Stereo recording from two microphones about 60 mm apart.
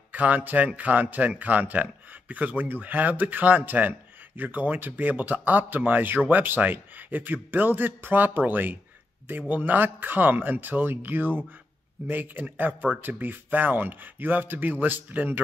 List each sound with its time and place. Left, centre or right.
0.1 s speech: right